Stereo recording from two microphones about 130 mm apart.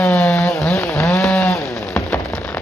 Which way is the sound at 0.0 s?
10° left (ahead or behind).